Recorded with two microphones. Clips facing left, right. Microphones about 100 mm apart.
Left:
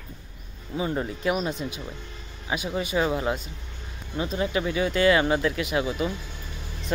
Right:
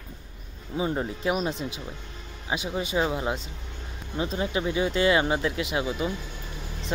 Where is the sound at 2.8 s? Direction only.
25° right (ahead or behind).